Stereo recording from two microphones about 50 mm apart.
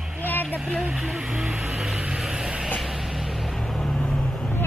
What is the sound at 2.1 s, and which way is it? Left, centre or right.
Vehicle, centre.